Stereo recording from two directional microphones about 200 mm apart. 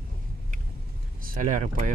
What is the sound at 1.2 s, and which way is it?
Speech, 40° right (ahead or behind).